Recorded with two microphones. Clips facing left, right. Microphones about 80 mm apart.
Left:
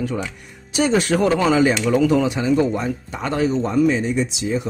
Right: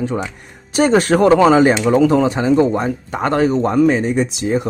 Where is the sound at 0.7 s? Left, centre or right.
Right.